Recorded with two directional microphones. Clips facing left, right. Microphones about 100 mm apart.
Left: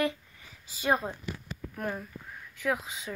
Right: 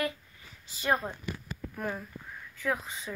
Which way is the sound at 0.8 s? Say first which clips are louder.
Left 1 dB; 15° left (ahead or behind).